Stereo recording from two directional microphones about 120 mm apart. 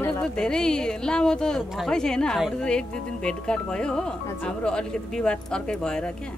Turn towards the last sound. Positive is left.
turn(degrees=5)  # may be behind; listen again after turning